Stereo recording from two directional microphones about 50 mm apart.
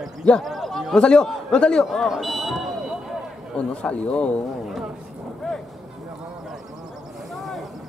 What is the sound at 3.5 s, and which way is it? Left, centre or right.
Speech, left.